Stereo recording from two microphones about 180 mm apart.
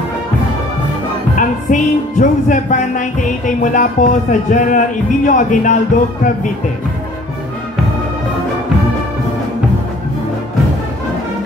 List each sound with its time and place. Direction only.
1.3 s music: 45° left (ahead or behind)